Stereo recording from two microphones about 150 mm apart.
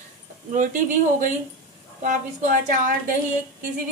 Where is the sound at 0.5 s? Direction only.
60° right (ahead or behind).